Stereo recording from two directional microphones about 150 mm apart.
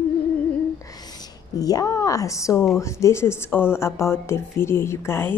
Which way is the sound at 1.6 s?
25° left (ahead or behind).